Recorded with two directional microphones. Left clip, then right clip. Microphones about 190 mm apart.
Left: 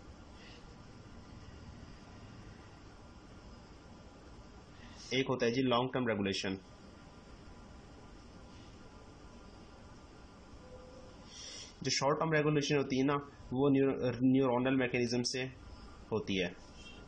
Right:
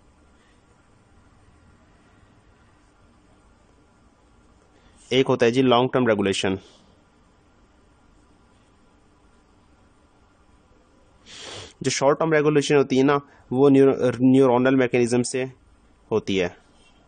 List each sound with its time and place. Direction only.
5.1 s speech: 55° right (ahead or behind)
11.8 s speech: 55° right (ahead or behind)